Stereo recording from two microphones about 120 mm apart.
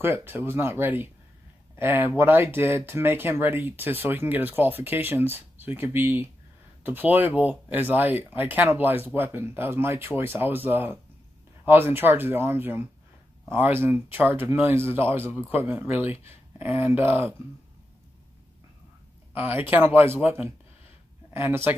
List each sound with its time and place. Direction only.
0.0 s speech: 20° right (ahead or behind)
19.3 s speech: 15° right (ahead or behind)